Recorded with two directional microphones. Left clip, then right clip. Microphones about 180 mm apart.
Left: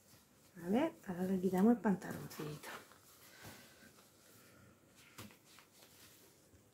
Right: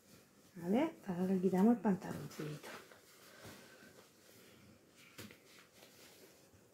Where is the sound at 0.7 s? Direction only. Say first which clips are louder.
Even; 20° right (ahead or behind).